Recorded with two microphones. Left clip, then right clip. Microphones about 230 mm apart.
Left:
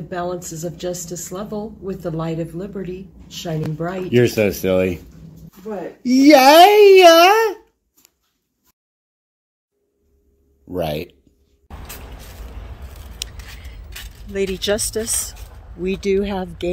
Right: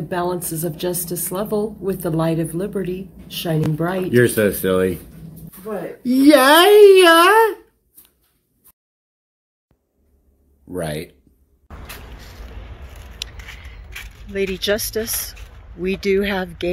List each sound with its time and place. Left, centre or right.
0.1 s a woman's voice: right
4.2 s a child's voice: centre
6.0 s a child's voice: centre
10.7 s a child's voice: centre
13.4 s a sound: centre
15.8 s speech: centre